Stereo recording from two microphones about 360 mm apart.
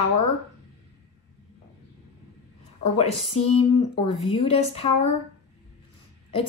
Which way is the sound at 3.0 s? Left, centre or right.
Left.